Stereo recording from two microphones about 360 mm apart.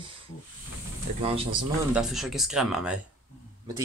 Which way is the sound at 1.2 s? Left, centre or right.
Centre.